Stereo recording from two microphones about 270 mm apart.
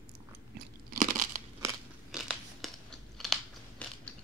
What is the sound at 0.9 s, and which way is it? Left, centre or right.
Crunch, right.